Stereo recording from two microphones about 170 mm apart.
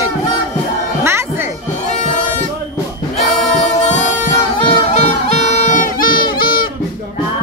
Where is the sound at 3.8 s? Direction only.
45° left (ahead or behind).